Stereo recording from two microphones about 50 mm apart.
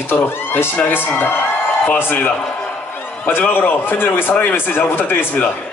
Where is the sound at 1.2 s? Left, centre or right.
Left.